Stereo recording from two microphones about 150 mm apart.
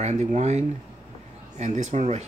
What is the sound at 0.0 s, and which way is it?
Speech, 50° right (ahead or behind).